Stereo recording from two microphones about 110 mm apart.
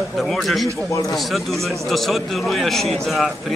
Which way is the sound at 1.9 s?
Centre (ahead or behind).